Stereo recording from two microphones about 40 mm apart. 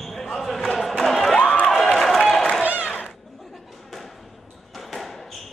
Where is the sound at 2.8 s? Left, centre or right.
Left.